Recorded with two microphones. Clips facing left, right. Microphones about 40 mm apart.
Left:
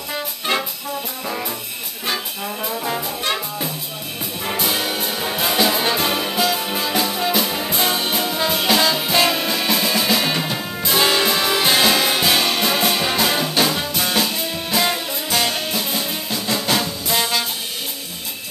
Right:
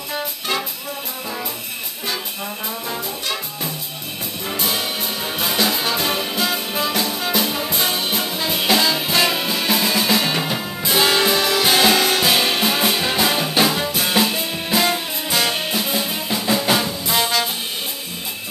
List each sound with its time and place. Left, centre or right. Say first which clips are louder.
0.5 s music: left 2 dB; centre
2.8 s trombone: left 4 dB; left
4.6 s music: left 1 dB; centre
17.1 s music: right 1 dB; centre